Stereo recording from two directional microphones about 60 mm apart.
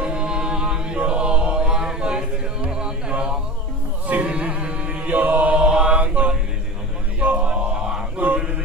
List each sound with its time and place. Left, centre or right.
0.0 s chant: centre
2.7 s a sound: centre
4.1 s chant: right
7.2 s mantra: right
8.2 s mantra: right